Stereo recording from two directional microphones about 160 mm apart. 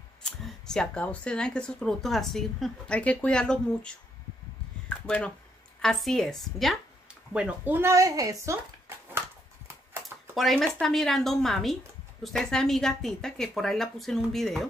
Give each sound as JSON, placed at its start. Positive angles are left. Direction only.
{"t": 0.2, "sound": "speech", "side_deg": 5}
{"t": 4.8, "sound": "a sound", "side_deg": 5}
{"t": 5.8, "sound": "speech", "side_deg": 0}
{"t": 10.0, "sound": "speech", "side_deg": 0}